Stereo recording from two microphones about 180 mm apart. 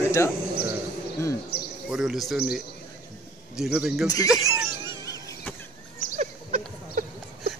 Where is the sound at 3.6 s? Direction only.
5° right (ahead or behind).